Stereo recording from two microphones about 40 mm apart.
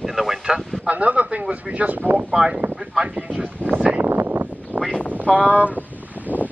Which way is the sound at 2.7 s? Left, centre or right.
Centre.